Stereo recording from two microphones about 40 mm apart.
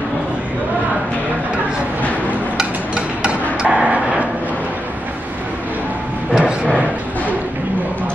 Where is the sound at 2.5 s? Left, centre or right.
Right.